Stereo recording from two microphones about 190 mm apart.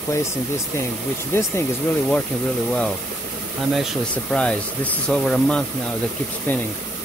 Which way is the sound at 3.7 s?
Centre (ahead or behind).